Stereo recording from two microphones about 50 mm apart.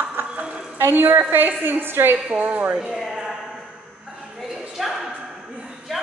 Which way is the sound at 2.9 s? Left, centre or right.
Centre.